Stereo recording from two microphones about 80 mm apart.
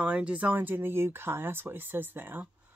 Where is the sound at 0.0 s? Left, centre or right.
Centre.